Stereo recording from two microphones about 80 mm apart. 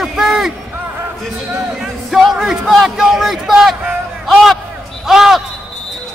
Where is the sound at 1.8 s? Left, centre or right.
Centre.